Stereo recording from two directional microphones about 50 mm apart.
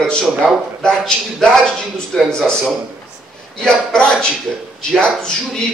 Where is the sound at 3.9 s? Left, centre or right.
Centre.